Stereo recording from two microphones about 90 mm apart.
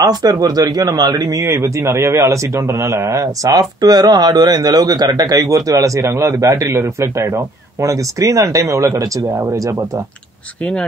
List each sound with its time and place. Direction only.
0.0 s speech: 45° right (ahead or behind)
1.4 s a man's voice: 35° right (ahead or behind)
10.6 s speech: 15° left (ahead or behind)